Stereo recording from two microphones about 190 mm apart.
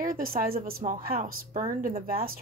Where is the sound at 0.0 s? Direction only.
50° right (ahead or behind).